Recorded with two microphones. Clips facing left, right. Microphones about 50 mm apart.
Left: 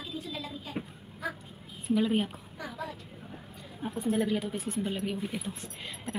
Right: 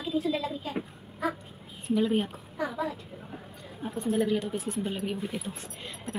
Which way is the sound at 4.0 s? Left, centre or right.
Centre.